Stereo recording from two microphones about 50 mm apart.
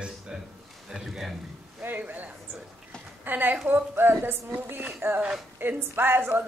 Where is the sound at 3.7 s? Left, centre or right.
Right.